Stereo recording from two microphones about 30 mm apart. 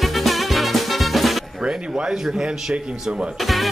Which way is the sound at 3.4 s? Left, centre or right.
Centre.